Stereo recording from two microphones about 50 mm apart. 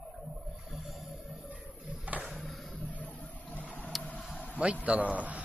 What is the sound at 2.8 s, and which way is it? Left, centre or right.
Vehicle, left.